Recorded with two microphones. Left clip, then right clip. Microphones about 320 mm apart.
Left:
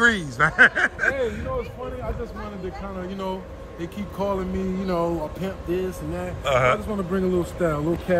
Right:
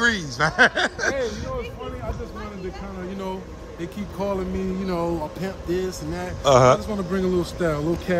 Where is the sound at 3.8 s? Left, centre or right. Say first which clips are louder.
Left 1 dB; centre.